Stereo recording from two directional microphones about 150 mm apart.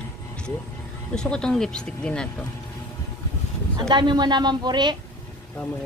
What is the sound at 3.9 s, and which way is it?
Speech, 30° right (ahead or behind).